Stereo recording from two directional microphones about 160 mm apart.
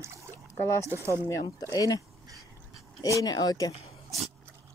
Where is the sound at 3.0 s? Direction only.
20° left (ahead or behind).